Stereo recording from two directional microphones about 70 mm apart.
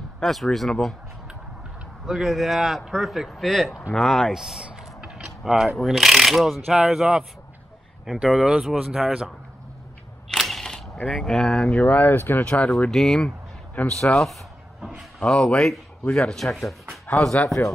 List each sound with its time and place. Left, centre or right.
0.2 s a man's voice: centre
2.0 s a man's voice: centre
10.3 s single-lens reflex camera: centre
11.1 s speech: centre
11.7 s speech: left
12.4 s speech: centre
12.9 s a man's voice: centre